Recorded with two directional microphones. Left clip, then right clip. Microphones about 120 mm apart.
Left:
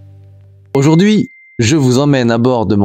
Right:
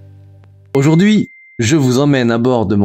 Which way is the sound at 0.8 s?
30° left (ahead or behind).